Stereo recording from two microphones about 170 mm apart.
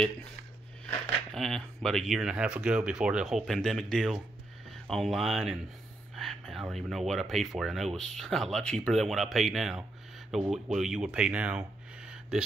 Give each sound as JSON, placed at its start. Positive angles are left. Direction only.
{"t": 0.8, "sound": "speech", "side_deg": 0}